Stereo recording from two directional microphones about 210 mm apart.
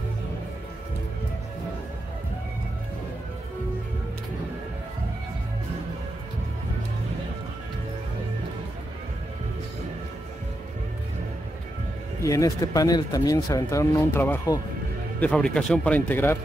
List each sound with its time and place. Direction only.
12.2 s speech: 15° left (ahead or behind)